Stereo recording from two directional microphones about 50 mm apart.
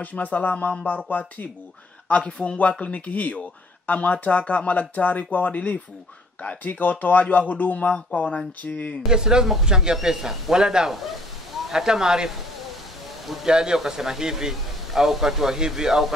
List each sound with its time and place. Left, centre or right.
0.0 s speech: left
2.0 s speech: left
9.0 s speech: centre
13.5 s speech: centre